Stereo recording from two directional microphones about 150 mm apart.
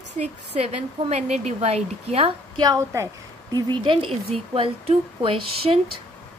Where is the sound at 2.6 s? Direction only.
20° right (ahead or behind); by 5.8 s 35° right (ahead or behind).